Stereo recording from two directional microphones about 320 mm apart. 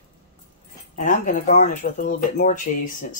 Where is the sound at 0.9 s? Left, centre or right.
Left.